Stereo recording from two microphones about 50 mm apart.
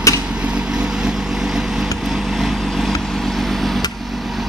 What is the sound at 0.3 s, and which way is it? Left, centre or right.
Vehicle, centre.